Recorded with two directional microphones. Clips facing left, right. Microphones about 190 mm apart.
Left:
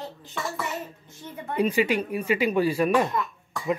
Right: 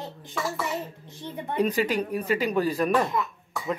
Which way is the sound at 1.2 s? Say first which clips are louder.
Right 3 dB; 20° right (ahead or behind).